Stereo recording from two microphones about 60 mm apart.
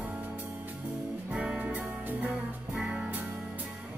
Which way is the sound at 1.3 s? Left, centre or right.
Centre.